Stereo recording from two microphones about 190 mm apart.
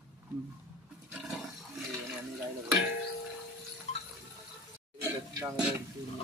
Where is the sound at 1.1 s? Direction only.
Centre (ahead or behind).